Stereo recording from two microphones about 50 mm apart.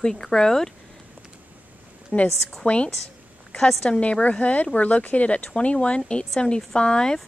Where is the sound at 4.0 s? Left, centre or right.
Left.